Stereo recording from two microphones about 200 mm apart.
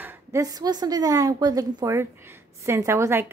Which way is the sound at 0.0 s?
10° right (ahead or behind).